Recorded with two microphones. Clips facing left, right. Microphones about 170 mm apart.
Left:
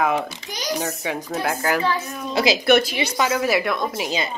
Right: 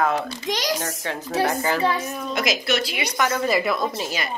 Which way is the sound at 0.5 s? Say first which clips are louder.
Right 7 dB; 90° right.